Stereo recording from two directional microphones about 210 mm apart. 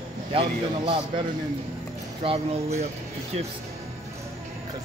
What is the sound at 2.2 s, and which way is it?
Speech, 30° right (ahead or behind).